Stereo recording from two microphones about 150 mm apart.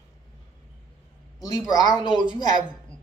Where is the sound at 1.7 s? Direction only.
25° left (ahead or behind).